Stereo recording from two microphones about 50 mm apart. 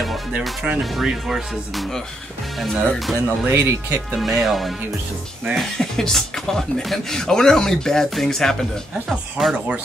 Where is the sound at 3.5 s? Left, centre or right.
Right.